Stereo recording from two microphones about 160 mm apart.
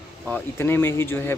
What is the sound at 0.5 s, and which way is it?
Speech, 15° left (ahead or behind).